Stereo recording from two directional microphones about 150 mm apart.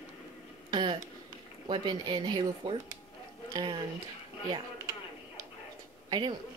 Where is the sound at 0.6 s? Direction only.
30° right (ahead or behind).